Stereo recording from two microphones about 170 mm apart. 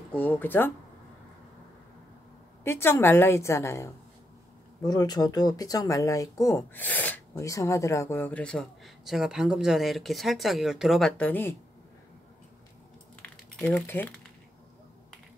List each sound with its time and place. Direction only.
0.1 s speech: 10° left (ahead or behind)
2.6 s speech: 15° left (ahead or behind)
13.2 s a sound: 5° left (ahead or behind)